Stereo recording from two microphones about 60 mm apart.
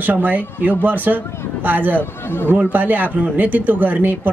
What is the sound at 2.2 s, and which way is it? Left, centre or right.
Speech, left.